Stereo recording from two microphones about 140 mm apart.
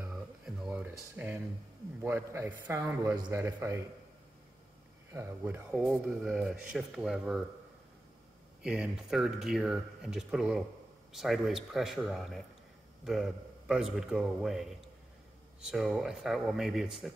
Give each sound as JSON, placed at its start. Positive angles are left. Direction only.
{"t": 0.0, "sound": "a sound", "side_deg": -5}
{"t": 2.0, "sound": "a man's voice", "side_deg": -15}
{"t": 5.1, "sound": "speech", "side_deg": -15}
{"t": 8.6, "sound": "speech", "side_deg": -5}